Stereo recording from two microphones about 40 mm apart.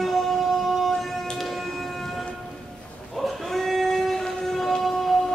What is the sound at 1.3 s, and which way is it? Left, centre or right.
Music, centre.